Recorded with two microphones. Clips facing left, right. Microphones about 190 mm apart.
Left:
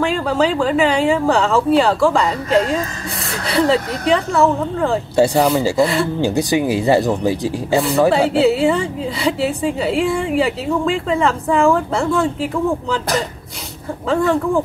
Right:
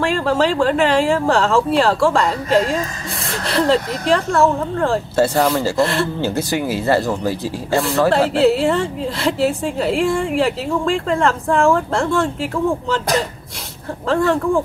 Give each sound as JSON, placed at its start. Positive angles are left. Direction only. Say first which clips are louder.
{"t": 0.0, "sound": "a woman's voice", "louder": "even", "side_deg": 0}
{"t": 5.1, "sound": "speech", "louder": "left 4 dB", "side_deg": 15}
{"t": 5.8, "sound": "a woman's voice", "louder": "left 2 dB", "side_deg": 0}
{"t": 6.2, "sound": "speech", "louder": "left 3 dB", "side_deg": 15}
{"t": 7.7, "sound": "a woman's voice", "louder": "left 1 dB", "side_deg": 0}